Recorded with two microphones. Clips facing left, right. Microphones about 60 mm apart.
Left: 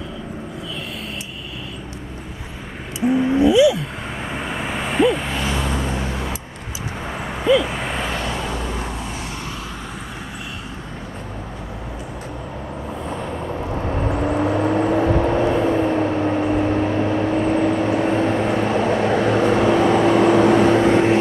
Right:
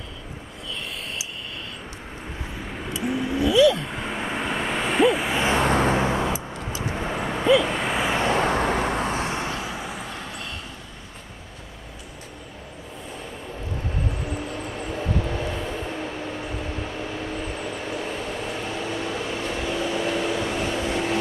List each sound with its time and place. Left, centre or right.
3.1 s a sound: left
3.8 s vehicle: centre
5.6 s vehicle: right
6.1 s vehicle: centre
8.4 s vehicle: right
9.4 s vehicle: centre
13.7 s vehicle: left